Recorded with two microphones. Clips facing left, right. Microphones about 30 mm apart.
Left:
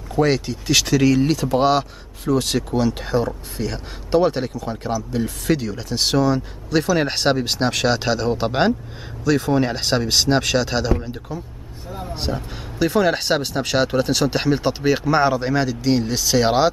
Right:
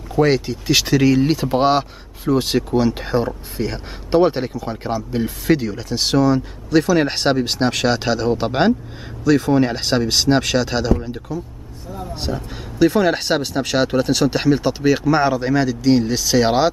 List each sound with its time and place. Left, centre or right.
0.1 s speech: centre
5.5 s speech: centre
11.9 s speech: centre
12.2 s speech: centre